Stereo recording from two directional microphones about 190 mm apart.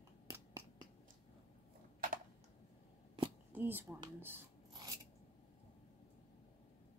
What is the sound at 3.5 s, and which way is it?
Speech, 10° right (ahead or behind).